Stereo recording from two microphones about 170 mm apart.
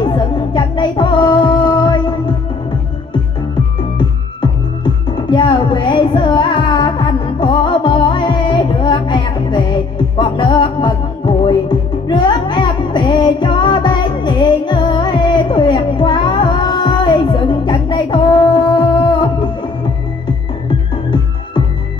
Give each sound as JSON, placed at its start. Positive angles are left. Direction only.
{"t": 0.0, "sound": "music", "side_deg": 25}
{"t": 4.4, "sound": "music", "side_deg": 30}